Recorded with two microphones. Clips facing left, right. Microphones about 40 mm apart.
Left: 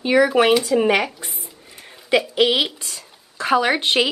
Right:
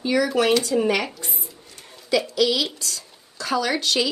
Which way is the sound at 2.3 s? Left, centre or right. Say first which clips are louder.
Left 3 dB; left.